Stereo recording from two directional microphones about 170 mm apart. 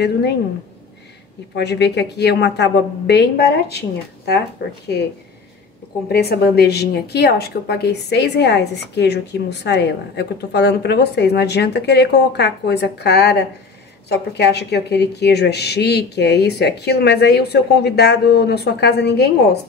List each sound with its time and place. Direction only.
0.0 s a woman's voice: 90° left
1.5 s a woman's voice: 80° left
6.1 s a woman's voice: 70° left (ahead or behind)